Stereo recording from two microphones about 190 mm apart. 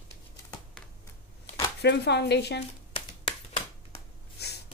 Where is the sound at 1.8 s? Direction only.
60° left (ahead or behind).